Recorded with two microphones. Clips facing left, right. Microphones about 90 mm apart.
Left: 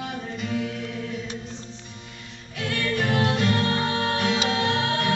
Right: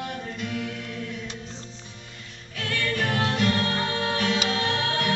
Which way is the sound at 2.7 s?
10° left (ahead or behind).